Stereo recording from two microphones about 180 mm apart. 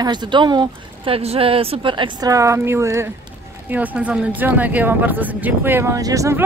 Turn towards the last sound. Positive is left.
turn(degrees=-20)  # may be behind; listen again after turning